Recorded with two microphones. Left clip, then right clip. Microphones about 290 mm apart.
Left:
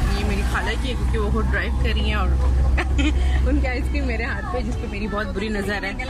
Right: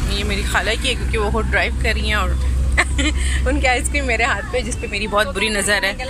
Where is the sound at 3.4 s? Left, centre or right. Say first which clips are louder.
Right 9 dB; right.